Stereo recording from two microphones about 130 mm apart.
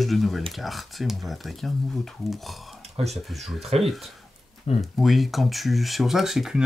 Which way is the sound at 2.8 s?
55° right (ahead or behind).